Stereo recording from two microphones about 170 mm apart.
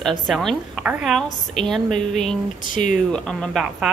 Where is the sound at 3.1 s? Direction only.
5° left (ahead or behind).